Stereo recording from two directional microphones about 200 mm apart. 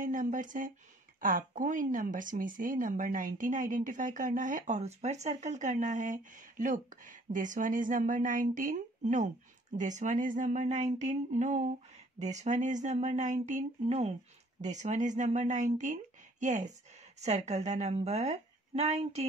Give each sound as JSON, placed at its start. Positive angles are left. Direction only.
{"t": 0.0, "sound": "speech", "side_deg": -40}